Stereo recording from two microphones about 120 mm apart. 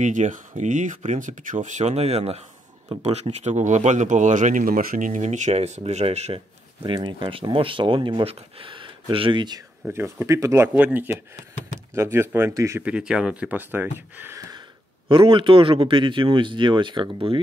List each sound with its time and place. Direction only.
0.0 s speech: 90° right; by 6.4 s 60° right (ahead or behind)
6.8 s speech: 45° right (ahead or behind)
9.8 s speech: 20° right (ahead or behind)
10.7 s speech: 15° right (ahead or behind)
12.8 s speech: 5° right (ahead or behind); by 14.6 s 25° right (ahead or behind)
15.0 s speech: 45° right (ahead or behind)